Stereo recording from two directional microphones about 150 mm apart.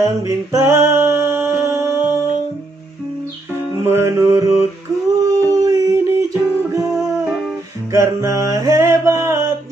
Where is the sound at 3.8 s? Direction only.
15° right (ahead or behind).